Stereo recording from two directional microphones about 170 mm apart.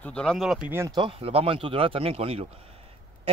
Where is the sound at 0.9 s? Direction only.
30° right (ahead or behind).